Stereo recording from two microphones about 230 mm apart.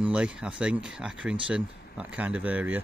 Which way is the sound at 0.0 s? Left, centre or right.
Centre.